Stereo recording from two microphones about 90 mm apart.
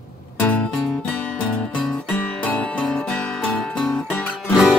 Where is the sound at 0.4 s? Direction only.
15° left (ahead or behind).